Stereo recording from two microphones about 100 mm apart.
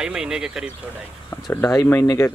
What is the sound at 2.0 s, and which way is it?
Speech, 30° left (ahead or behind).